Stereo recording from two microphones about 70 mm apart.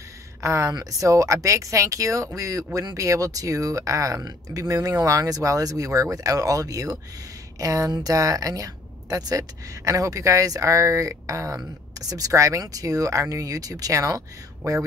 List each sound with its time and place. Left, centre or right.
0.4 s a woman's voice: right